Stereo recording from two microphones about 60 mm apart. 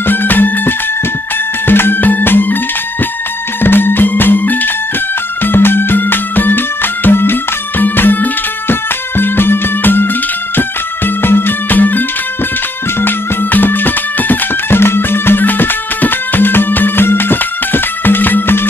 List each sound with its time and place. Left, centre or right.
0.0 s music: left
3.6 s music: left
13.0 s music: left